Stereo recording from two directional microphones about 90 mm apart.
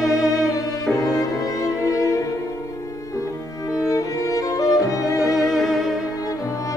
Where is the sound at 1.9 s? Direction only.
40° left (ahead or behind).